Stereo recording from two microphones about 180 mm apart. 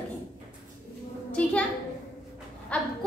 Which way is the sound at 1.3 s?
5° left (ahead or behind).